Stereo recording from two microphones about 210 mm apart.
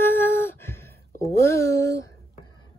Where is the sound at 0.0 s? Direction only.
10° left (ahead or behind).